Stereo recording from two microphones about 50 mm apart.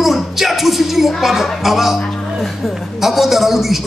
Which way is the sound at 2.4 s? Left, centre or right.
Centre.